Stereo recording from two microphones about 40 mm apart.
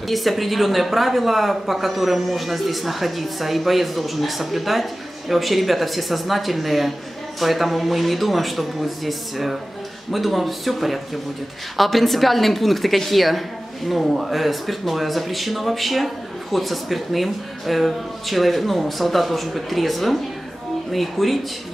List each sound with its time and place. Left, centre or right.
0.1 s speech: centre